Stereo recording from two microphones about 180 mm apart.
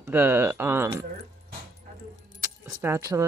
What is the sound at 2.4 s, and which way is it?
Keys jangling, 15° right (ahead or behind).